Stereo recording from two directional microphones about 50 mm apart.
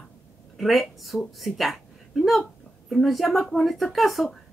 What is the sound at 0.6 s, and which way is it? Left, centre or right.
A woman's voice, centre.